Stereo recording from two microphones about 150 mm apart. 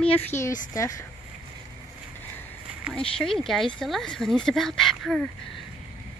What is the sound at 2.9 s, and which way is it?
Speech, 5° left (ahead or behind).